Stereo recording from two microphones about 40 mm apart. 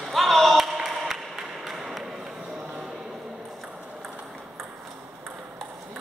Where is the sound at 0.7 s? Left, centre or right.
Centre.